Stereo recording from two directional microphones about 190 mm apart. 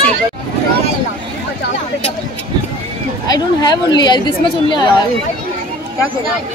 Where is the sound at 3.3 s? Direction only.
20° left (ahead or behind).